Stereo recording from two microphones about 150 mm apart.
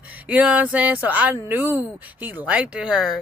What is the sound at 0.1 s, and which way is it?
Speech, 10° right (ahead or behind).